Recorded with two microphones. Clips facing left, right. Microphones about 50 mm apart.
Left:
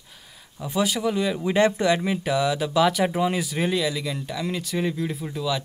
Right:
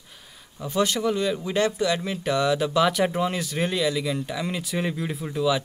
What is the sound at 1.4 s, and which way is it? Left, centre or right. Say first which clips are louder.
Speech: left 3 dB; left.